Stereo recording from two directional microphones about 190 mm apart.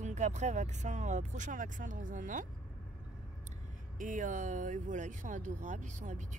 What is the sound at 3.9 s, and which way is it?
Speech, 45° right (ahead or behind).